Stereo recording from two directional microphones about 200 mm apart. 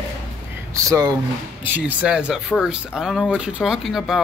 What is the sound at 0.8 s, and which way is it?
Speech, 20° right (ahead or behind).